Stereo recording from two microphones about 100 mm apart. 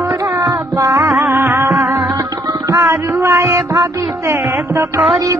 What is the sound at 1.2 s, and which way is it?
Music, 20° right (ahead or behind).